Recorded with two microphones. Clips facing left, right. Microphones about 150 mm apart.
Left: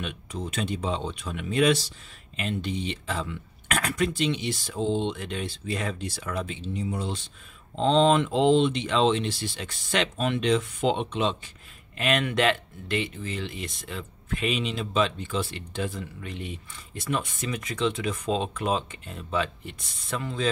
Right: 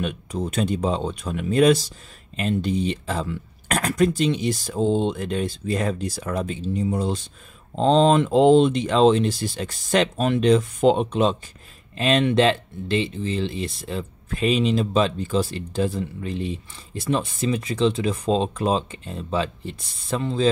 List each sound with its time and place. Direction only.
0.0 s speech: 40° right (ahead or behind)
12.0 s speech: 30° right (ahead or behind)